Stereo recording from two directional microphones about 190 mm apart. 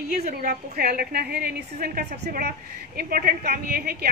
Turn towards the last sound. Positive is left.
turn(degrees=-50)  # may be behind; listen again after turning